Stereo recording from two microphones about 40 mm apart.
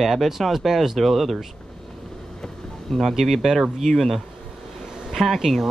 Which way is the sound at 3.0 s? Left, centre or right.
Centre.